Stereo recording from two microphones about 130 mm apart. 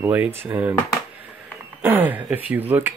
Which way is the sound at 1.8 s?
15° right (ahead or behind).